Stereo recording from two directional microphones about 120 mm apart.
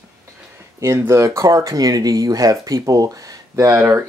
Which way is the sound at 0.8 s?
25° right (ahead or behind).